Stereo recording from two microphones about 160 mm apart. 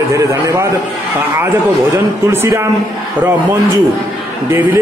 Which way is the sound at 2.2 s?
15° right (ahead or behind).